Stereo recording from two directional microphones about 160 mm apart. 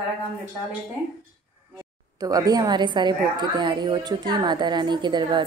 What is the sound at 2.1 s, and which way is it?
A woman's voice, 25° right (ahead or behind).